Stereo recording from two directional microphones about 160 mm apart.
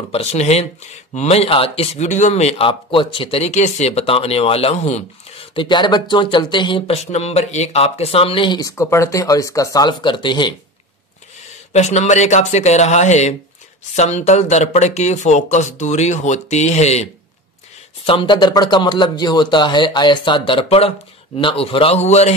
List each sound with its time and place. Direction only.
0.1 s speech: 40° left (ahead or behind)
5.5 s speech: 30° left (ahead or behind)
7.1 s speech: 40° left (ahead or behind)
11.7 s speech: 45° left (ahead or behind)
18.0 s speech: 30° left (ahead or behind)